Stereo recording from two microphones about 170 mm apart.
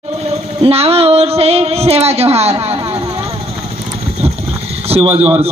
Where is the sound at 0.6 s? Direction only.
35° right (ahead or behind).